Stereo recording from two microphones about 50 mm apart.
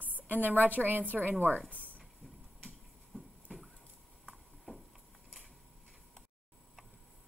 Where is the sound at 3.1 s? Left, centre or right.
Centre.